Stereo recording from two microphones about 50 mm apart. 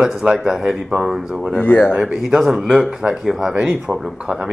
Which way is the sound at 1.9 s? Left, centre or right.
Centre.